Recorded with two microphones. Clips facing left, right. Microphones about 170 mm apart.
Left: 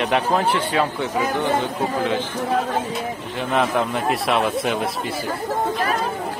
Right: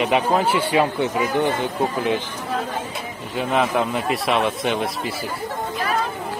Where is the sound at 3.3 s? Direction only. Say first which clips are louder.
Right 1 dB; 5° right (ahead or behind).